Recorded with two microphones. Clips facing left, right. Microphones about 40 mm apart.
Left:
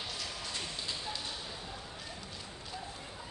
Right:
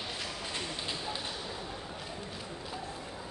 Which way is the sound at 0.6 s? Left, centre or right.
Right.